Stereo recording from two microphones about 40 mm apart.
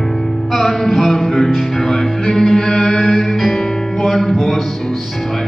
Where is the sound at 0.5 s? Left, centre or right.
Centre.